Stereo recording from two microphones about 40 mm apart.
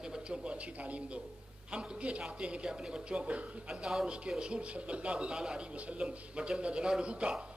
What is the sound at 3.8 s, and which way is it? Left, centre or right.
Speech, centre.